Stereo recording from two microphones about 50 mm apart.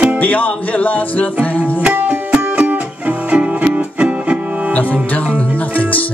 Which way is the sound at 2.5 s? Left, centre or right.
Right.